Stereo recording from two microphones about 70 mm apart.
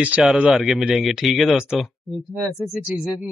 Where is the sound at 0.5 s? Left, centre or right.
Centre.